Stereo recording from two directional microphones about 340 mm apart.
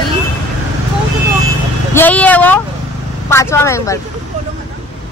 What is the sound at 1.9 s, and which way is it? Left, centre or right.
Speech, centre.